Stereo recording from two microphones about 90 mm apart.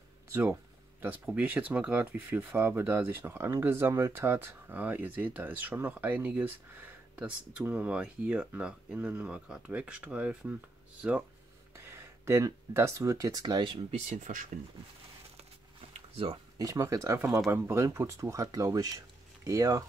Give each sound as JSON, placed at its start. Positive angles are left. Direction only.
{"t": 1.2, "sound": "speech", "side_deg": -15}
{"t": 11.7, "sound": "speech", "side_deg": -30}
{"t": 16.5, "sound": "speech", "side_deg": -40}